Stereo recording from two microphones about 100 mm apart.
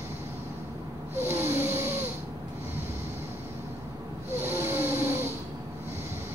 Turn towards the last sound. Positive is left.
turn(degrees=-25)  # may be behind; listen again after turning